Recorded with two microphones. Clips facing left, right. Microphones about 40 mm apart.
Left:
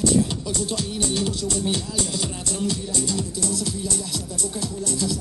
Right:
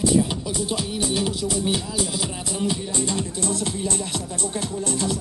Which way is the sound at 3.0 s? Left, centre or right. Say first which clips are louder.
Right 1 dB; right.